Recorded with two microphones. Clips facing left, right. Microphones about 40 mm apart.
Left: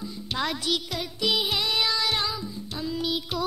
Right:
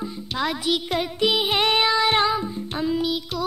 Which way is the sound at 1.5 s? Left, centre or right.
Right.